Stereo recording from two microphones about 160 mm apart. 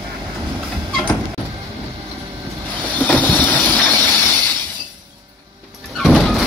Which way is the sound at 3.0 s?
10° left (ahead or behind).